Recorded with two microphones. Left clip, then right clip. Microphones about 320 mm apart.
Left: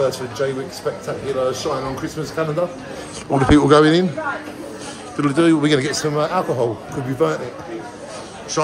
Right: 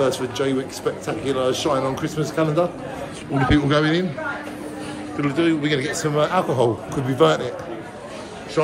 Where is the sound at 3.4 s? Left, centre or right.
Centre.